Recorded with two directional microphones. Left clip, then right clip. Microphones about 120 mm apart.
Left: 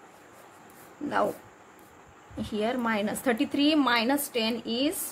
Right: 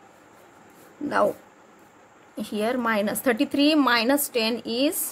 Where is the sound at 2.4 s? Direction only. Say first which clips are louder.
Right 3 dB; 45° right (ahead or behind).